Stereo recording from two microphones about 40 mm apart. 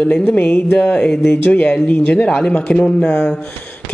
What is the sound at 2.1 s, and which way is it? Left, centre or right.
A man's voice, left.